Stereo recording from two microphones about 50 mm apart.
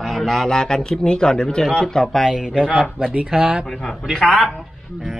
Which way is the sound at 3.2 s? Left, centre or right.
Centre.